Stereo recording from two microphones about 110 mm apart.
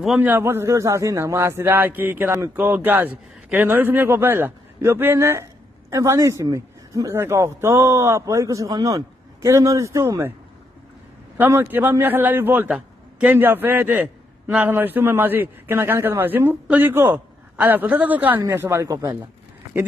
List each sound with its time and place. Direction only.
0.4 s a man's voice: 25° right (ahead or behind)
11.3 s a man's voice: 20° right (ahead or behind)